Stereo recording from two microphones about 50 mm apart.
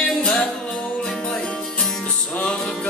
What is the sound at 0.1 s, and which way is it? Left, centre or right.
Music, centre.